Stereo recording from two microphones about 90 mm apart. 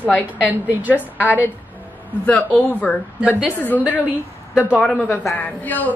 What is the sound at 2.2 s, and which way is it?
Speech, 15° left (ahead or behind).